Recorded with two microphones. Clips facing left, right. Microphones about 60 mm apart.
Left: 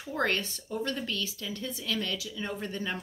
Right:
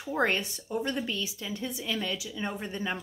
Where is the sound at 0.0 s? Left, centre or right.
Centre.